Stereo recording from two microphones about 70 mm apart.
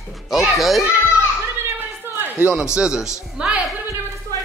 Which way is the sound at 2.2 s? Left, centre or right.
Right.